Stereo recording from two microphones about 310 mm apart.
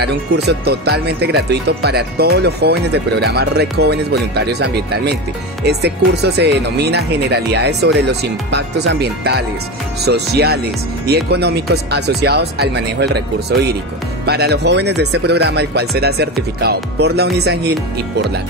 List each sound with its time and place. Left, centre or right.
0.0 s speech: right